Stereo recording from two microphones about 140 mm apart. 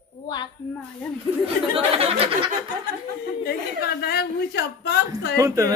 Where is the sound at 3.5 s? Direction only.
90° left.